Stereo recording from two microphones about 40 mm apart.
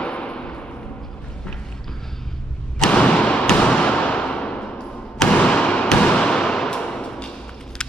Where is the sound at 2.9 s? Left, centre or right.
Left.